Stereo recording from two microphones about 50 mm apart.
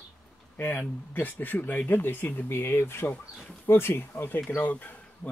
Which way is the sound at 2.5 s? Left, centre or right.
Left.